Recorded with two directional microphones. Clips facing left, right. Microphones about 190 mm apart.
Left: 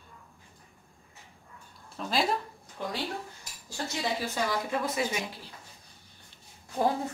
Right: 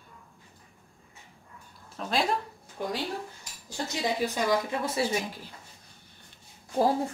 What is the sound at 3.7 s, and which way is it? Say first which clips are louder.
Speech: right 2 dB; 15° right (ahead or behind).